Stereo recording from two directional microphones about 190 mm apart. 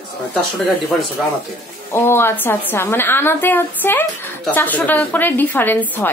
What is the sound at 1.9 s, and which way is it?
A woman's voice, 10° left (ahead or behind).